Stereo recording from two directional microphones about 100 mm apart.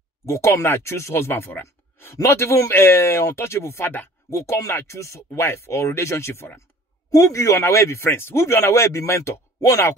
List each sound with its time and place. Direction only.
0.3 s speech: 30° left (ahead or behind)